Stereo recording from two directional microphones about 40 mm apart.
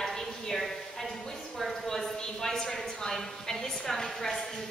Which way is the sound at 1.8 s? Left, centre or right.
Centre.